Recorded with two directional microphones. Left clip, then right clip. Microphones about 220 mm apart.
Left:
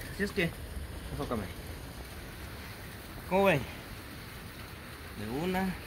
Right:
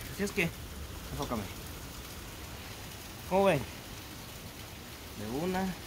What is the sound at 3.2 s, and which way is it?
Speech, centre (ahead or behind).